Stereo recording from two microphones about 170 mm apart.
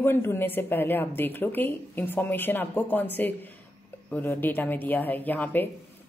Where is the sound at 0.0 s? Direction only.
15° left (ahead or behind).